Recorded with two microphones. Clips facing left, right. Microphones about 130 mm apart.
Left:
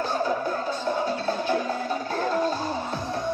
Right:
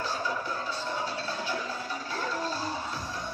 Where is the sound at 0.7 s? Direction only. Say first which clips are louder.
Left 7 dB; 50° left (ahead or behind).